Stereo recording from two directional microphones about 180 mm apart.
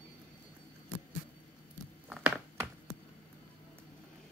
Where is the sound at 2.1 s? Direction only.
5° right (ahead or behind).